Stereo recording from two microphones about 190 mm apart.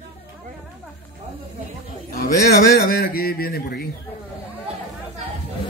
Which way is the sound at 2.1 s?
50° left (ahead or behind).